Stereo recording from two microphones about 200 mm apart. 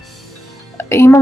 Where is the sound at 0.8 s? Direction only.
15° left (ahead or behind).